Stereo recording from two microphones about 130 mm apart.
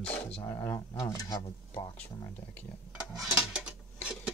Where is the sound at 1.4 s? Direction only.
45° left (ahead or behind).